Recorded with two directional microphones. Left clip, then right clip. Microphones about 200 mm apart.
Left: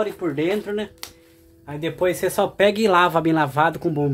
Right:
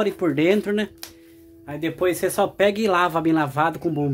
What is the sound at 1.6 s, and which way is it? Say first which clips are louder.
Speech: left 1 dB; 20° right (ahead or behind).